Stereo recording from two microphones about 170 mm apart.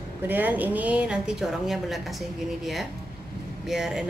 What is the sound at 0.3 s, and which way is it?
Speech, 10° right (ahead or behind).